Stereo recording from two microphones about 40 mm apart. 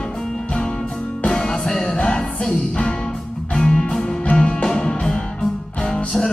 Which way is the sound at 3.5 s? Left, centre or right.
Centre.